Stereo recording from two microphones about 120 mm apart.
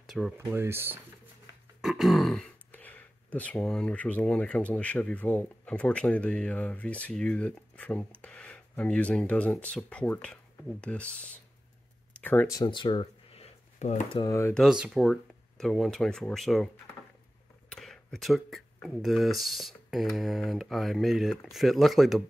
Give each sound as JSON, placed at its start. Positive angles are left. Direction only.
{"t": 0.0, "sound": "a sound", "side_deg": 0}
{"t": 0.4, "sound": "speech", "side_deg": -20}
{"t": 1.8, "sound": "speech", "side_deg": 0}
{"t": 12.1, "sound": "a sound", "side_deg": 15}
{"t": 12.6, "sound": "speech", "side_deg": 40}
{"t": 13.7, "sound": "speech", "side_deg": 75}
{"t": 14.2, "sound": "speech", "side_deg": 25}
{"t": 14.5, "sound": "speech", "side_deg": -5}